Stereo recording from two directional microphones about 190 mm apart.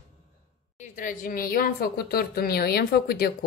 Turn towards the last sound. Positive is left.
turn(degrees=55)  # may be behind; listen again after turning